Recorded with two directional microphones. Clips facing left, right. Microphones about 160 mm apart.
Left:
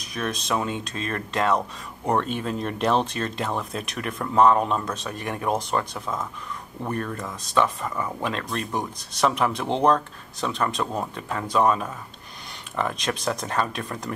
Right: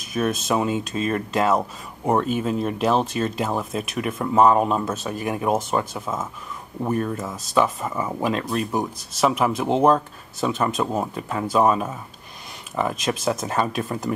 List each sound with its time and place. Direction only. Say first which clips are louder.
0.0 s speech: right 6 dB; 5° right (ahead or behind)
7.9 s speech: right 3 dB; 20° right (ahead or behind)
8.2 s speech: right 5 dB; 5° right (ahead or behind)